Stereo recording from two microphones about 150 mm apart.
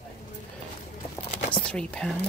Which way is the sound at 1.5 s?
5° left (ahead or behind).